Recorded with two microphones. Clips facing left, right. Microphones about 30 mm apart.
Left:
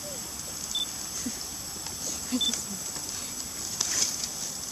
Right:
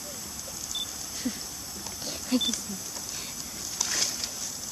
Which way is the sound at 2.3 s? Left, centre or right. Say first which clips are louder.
Right 3 dB; right.